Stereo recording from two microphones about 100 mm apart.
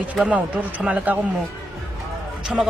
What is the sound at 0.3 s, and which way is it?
Speech, 15° right (ahead or behind).